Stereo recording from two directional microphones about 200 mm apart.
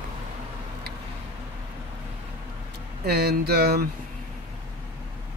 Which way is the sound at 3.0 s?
50° right (ahead or behind).